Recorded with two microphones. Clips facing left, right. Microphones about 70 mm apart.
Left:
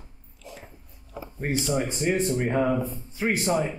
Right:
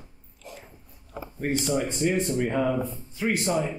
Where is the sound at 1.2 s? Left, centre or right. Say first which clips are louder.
Right 1 dB; right.